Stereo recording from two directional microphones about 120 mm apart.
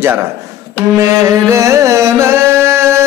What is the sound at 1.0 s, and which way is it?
Carnatic music, 25° right (ahead or behind).